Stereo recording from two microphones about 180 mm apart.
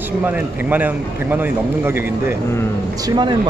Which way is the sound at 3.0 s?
25° right (ahead or behind).